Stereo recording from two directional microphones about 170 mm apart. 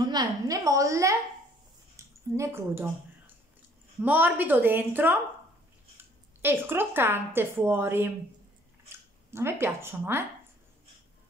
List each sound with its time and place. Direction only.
0.1 s a woman's voice: 20° right (ahead or behind)
4.0 s a woman's voice: 10° right (ahead or behind)